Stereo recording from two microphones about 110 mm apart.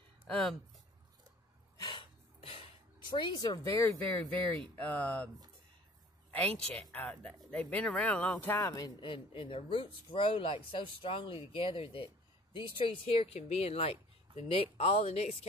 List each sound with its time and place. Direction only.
0.3 s speech: 5° left (ahead or behind)
1.8 s a sound: 45° left (ahead or behind); by 4.0 s 30° left (ahead or behind)
4.7 s speech: 15° left (ahead or behind)
6.3 s speech: 10° left (ahead or behind)
8.5 s speech: 35° left (ahead or behind)
9.0 s speech: 50° left (ahead or behind); by 15.3 s 70° left (ahead or behind)